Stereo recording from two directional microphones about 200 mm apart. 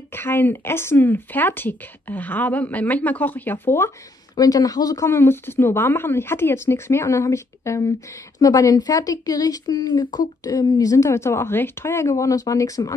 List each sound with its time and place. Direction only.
0.1 s speech: 10° left (ahead or behind)